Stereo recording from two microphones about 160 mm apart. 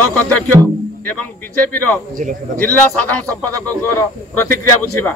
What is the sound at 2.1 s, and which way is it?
Speech, 55° right (ahead or behind).